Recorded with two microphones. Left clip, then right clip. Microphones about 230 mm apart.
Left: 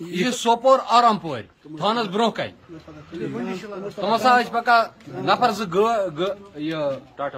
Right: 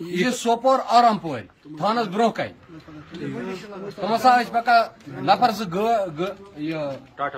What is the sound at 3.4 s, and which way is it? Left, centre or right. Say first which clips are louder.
A man's voice: left 2 dB; left.